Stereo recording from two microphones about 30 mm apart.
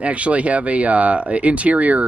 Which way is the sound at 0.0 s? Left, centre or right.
Right.